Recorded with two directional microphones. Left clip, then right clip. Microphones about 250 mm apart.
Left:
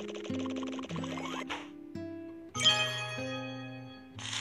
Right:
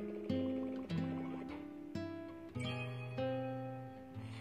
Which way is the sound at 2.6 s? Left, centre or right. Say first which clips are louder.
Left 19 dB; left.